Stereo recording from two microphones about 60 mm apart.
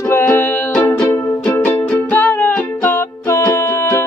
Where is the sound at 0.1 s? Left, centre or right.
Left.